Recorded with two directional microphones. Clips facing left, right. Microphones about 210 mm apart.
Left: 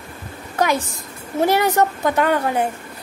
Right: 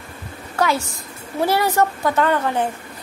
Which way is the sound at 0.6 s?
15° left (ahead or behind).